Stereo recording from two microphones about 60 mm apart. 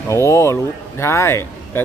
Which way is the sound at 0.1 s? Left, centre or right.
Left.